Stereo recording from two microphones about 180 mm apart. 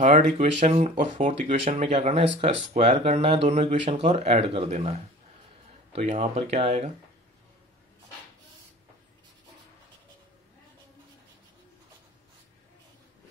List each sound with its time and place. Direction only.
0.0 s speech: 40° right (ahead or behind)
1.8 s speech: 35° right (ahead or behind)
5.9 s speech: 35° right (ahead or behind)